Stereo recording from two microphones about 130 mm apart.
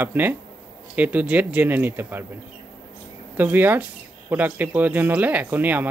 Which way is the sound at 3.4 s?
15° right (ahead or behind).